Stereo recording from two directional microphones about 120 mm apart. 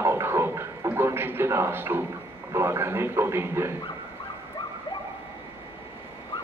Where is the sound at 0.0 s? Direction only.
20° right (ahead or behind).